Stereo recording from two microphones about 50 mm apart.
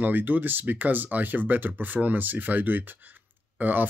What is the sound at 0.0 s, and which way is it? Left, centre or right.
Speech, right.